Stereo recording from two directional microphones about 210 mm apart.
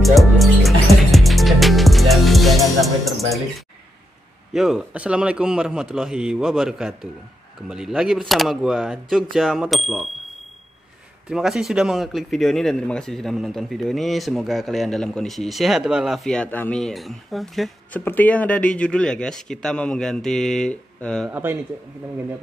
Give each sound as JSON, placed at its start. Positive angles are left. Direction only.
{"t": 0.0, "sound": "music", "side_deg": 0}
{"t": 4.6, "sound": "a man's voice", "side_deg": -5}
{"t": 11.2, "sound": "a man's voice", "side_deg": 0}
{"t": 21.3, "sound": "speech", "side_deg": -10}